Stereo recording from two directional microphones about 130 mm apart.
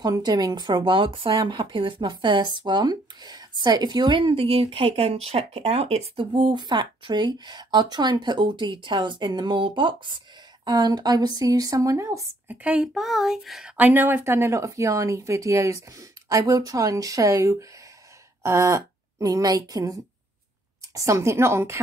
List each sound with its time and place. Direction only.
0.0 s speech: 30° right (ahead or behind)
12.6 s speech: 5° right (ahead or behind)
13.7 s a woman's voice: 15° right (ahead or behind)